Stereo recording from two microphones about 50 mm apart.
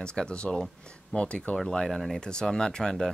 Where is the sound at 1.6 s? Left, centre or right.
Centre.